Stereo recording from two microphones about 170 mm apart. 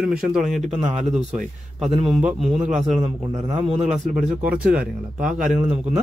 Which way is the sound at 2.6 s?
45° right (ahead or behind).